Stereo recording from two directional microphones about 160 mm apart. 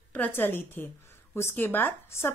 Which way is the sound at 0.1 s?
10° left (ahead or behind).